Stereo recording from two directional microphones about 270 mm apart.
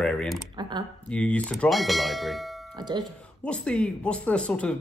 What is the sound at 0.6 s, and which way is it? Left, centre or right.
Speech, centre.